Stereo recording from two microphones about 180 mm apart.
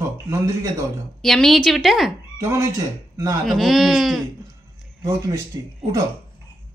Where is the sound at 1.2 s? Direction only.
Centre (ahead or behind).